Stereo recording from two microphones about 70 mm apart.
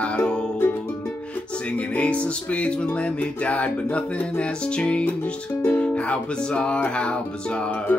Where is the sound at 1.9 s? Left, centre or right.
Centre.